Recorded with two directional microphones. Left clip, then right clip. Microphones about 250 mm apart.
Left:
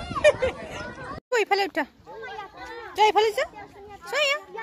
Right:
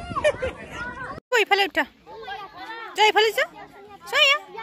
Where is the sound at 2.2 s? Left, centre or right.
Right.